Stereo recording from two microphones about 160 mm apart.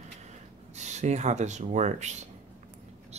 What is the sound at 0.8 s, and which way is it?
Speech, 45° right (ahead or behind).